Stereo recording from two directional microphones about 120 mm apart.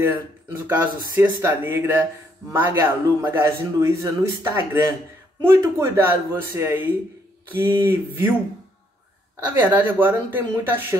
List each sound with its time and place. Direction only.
0.0 s a man's voice: 15° right (ahead or behind)
9.5 s speech: 15° right (ahead or behind)